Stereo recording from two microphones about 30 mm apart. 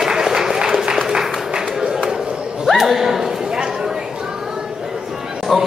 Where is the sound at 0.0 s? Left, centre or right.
Centre.